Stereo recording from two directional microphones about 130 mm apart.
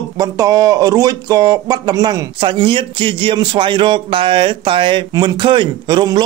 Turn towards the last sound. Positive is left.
turn(degrees=-35)  # may be behind; listen again after turning